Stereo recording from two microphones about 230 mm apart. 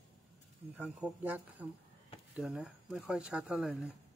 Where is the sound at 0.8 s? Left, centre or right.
Centre.